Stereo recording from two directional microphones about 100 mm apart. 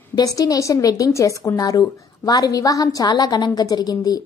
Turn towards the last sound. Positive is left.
turn(degrees=40)  # may be behind; listen again after turning